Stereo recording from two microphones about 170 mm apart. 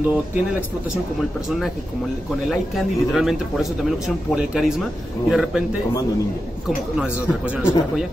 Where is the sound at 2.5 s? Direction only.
Centre (ahead or behind).